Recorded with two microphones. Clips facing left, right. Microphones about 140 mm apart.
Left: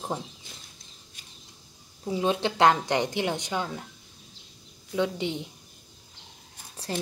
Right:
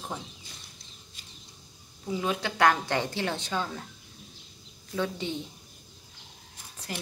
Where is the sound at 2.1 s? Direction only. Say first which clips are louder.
Left 4 dB; 30° left (ahead or behind).